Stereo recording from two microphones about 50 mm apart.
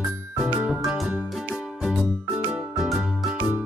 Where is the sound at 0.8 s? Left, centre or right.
Centre.